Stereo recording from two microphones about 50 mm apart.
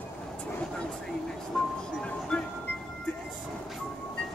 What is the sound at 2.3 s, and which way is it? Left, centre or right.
Music, left.